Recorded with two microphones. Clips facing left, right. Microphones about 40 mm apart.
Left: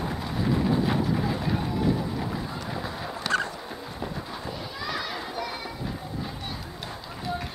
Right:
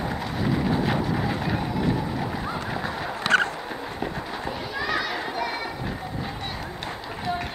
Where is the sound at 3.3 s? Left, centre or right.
Right.